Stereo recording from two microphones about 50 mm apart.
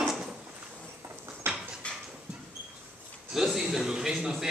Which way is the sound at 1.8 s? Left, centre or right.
Left.